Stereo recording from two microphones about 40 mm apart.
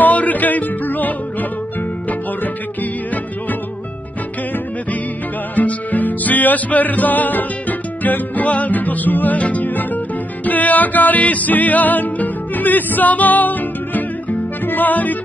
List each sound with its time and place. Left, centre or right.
0.0 s music: left
5.6 s music: left